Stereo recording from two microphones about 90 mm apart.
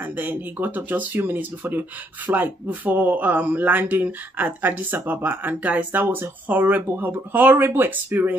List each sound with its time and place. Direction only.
0.2 s speech: 20° right (ahead or behind)